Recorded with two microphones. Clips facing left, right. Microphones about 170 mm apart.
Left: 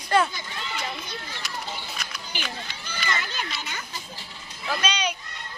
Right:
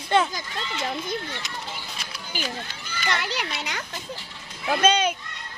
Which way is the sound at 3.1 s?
75° right (ahead or behind).